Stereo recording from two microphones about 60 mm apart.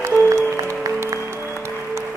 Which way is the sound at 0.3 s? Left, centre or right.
Right.